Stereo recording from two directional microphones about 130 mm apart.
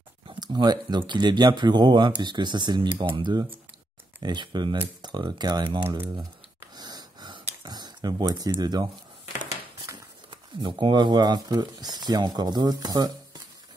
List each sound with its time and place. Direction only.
0.3 s speech: 35° right (ahead or behind)
6.7 s a sound: 30° right (ahead or behind)
8.4 s speech: 30° right (ahead or behind)
10.3 s speech: 40° right (ahead or behind)